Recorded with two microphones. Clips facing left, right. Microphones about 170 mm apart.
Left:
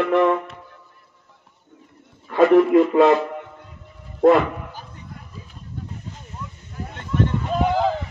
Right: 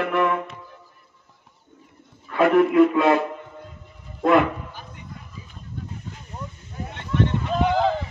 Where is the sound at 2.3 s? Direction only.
55° right (ahead or behind).